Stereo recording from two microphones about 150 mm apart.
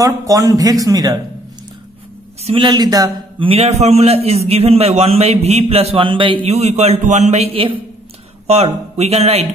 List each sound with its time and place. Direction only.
0.0 s speech: 20° right (ahead or behind)
2.4 s speech: 35° right (ahead or behind)
3.4 s a man's voice: 45° right (ahead or behind)